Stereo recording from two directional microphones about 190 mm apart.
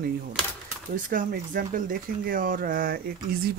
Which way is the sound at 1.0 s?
45° right (ahead or behind).